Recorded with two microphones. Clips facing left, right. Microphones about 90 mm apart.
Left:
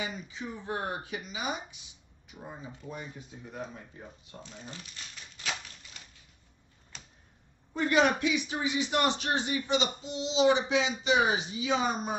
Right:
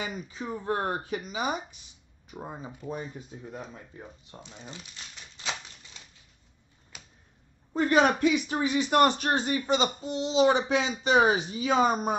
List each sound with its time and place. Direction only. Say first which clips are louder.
0.0 s speech: right 2 dB; 45° right (ahead or behind)
4.3 s speech: right 1 dB; 20° right (ahead or behind)
6.9 s a sound: even; 10° right (ahead or behind)
7.7 s speech: right 3 dB; 40° right (ahead or behind)